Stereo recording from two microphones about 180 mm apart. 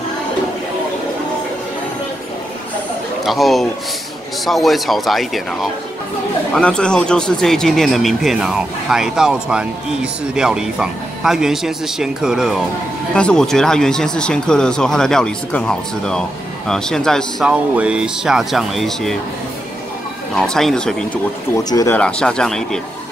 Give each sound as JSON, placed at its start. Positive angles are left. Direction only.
{"t": 3.3, "sound": "speech", "side_deg": 0}
{"t": 20.3, "sound": "speech", "side_deg": 5}
{"t": 21.6, "sound": "speech", "side_deg": 20}
{"t": 21.9, "sound": "speech", "side_deg": 5}